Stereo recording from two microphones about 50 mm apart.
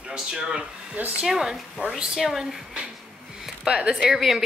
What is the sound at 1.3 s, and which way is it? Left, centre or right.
Speech, centre.